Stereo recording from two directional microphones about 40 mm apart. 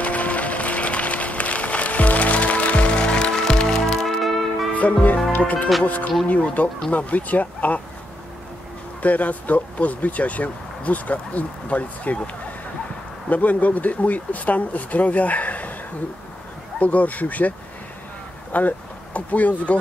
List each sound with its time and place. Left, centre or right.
0.0 s music: left; by 3.8 s centre
3.9 s music: centre
4.7 s music: left
5.4 s speech: left
9.0 s speech: left
13.3 s speech: left
16.8 s speech: left